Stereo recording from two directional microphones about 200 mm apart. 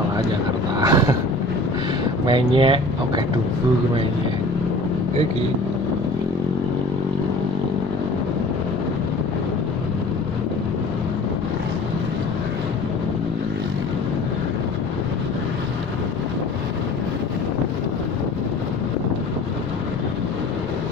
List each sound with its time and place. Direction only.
0.7 s vehicle: 20° right (ahead or behind)
2.2 s speech: 25° right (ahead or behind)